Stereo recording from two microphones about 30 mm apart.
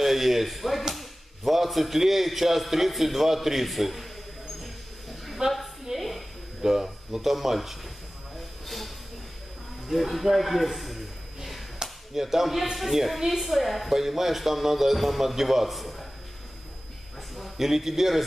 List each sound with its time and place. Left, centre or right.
0.0 s a man's voice: centre
5.4 s a woman's voice: right
5.9 s a sound: centre
6.6 s speech: centre
8.6 s hiss: centre
9.8 s a sound: centre
12.1 s a man's voice: centre
17.4 s a man's voice: centre